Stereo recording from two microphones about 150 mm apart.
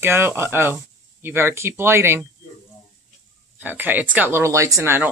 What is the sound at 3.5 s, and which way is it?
A woman's voice, 10° right (ahead or behind).